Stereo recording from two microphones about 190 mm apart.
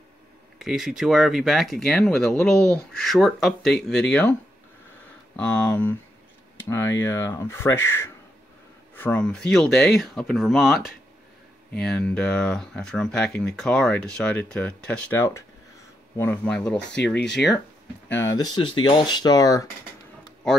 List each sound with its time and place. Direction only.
0.6 s speech: centre (ahead or behind)
18.1 s speech: 20° left (ahead or behind)